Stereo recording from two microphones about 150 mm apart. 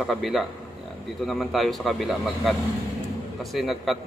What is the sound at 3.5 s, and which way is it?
Speech, centre (ahead or behind).